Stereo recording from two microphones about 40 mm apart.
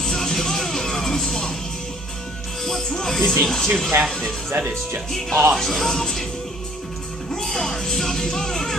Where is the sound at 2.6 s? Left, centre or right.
Centre.